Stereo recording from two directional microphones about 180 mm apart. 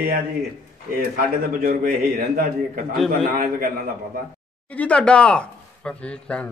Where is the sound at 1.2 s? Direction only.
50° right (ahead or behind).